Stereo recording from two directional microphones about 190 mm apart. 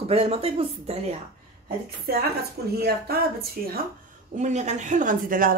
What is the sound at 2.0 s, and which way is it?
A woman's voice, 55° right (ahead or behind).